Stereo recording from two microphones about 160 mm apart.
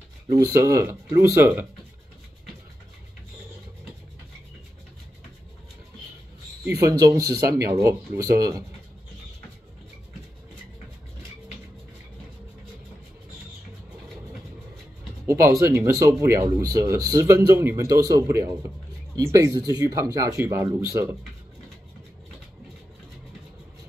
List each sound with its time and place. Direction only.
0.3 s speech: 20° right (ahead or behind)
6.8 s speech: 20° right (ahead or behind)
15.2 s speech: 20° right (ahead or behind)